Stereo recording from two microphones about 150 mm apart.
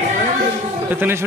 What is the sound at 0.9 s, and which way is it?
Speech, 15° right (ahead or behind).